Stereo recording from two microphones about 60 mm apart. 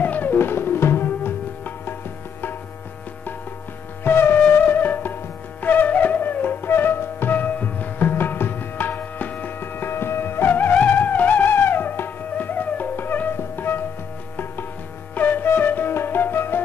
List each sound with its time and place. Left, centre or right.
0.0 s music: left
4.0 s wind instrument: left
4.6 s music: left
14.3 s tabla: left
15.1 s music: left
15.4 s flute: left